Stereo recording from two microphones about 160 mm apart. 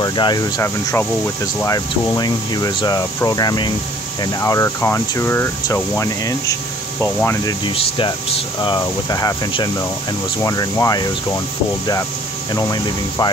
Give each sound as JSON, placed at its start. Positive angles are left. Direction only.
{"t": 0.0, "sound": "speech", "side_deg": 25}
{"t": 7.6, "sound": "speech", "side_deg": 30}
{"t": 12.5, "sound": "speech", "side_deg": 25}